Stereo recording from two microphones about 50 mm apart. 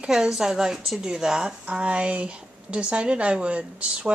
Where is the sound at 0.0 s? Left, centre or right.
Centre.